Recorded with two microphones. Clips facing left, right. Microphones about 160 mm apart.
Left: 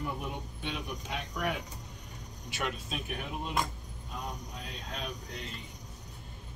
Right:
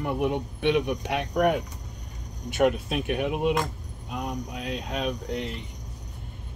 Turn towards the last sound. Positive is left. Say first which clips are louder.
# right 11 dB
turn(degrees=-70)  # may be behind; listen again after turning